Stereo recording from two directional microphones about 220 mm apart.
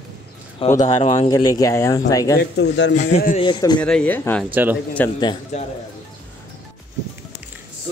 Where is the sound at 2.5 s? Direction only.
50° left (ahead or behind).